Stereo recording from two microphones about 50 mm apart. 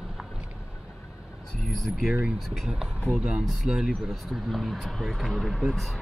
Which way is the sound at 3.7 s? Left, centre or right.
Centre.